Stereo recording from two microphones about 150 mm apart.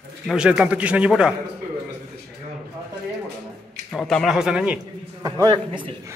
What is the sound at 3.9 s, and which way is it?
Speech, centre (ahead or behind).